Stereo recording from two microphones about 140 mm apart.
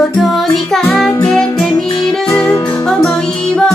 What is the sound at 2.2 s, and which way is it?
Music, 25° left (ahead or behind).